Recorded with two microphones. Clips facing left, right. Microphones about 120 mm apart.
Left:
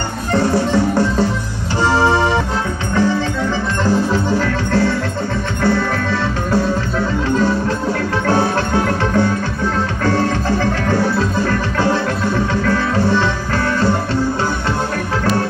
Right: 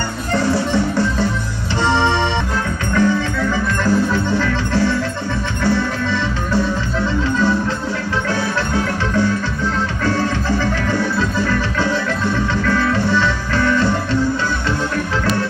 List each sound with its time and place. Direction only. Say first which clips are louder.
1.8 s music: left 2 dB; 35° left (ahead or behind)
8.3 s music: left 6 dB; 50° left (ahead or behind)